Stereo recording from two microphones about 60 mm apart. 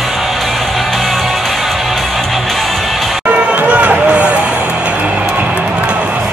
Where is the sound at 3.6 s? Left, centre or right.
Centre.